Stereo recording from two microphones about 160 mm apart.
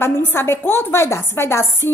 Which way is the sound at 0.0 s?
15° left (ahead or behind).